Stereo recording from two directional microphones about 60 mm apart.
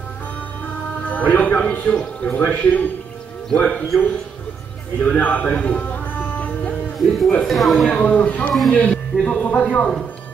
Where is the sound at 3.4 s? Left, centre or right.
Centre.